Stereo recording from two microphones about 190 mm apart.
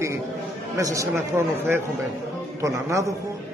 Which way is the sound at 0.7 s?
15° right (ahead or behind).